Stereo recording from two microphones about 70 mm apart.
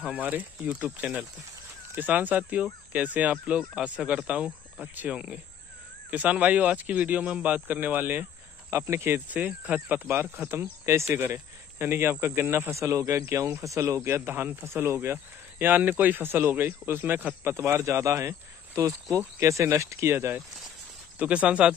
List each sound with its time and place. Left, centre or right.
0.0 s speech: right
8.6 s speech: right
9.3 s speech: right
10.6 s speech: right
11.1 s speech: right
12.7 s speech: right
15.6 s speech: right
21.2 s speech: centre